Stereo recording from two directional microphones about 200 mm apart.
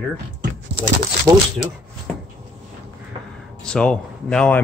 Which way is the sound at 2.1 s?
5° left (ahead or behind).